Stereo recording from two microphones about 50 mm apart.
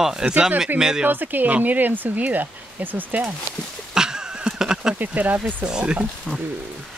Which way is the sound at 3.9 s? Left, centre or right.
Centre.